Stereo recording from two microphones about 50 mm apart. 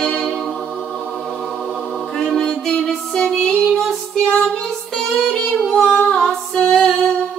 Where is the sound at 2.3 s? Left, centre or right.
Centre.